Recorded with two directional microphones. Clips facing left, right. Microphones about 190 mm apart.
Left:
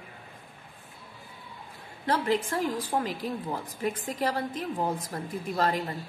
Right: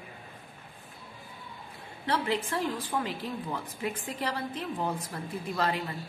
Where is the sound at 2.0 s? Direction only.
40° left (ahead or behind).